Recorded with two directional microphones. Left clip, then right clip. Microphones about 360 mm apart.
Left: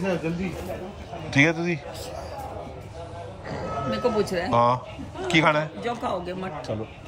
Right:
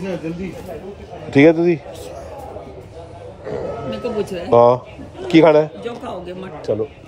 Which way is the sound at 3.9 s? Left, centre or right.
Left.